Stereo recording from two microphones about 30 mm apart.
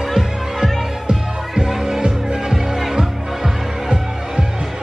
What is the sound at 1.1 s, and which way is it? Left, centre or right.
Music, centre.